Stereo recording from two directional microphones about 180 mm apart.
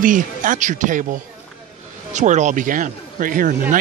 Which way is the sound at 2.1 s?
40° right (ahead or behind).